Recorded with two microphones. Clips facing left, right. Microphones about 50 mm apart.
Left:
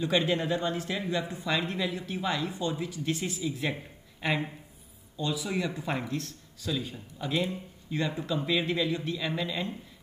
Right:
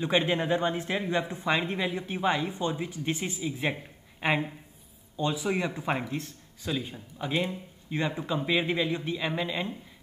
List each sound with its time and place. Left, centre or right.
0.0 s speech: right